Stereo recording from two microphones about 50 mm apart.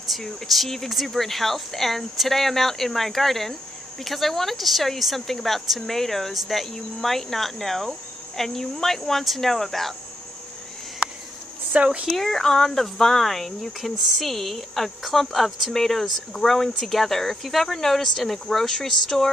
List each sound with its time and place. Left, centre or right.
0.0 s speech: centre
11.7 s speech: right
12.1 s speech: centre